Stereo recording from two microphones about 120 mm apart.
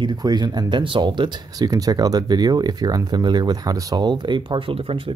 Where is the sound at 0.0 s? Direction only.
35° right (ahead or behind).